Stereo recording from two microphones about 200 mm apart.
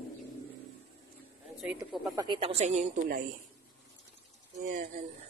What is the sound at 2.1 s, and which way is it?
Speech, 20° right (ahead or behind).